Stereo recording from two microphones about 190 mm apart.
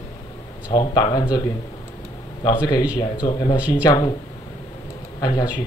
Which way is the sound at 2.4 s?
20° left (ahead or behind).